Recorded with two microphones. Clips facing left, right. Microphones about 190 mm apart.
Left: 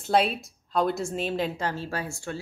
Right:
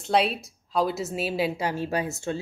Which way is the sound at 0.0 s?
Centre (ahead or behind).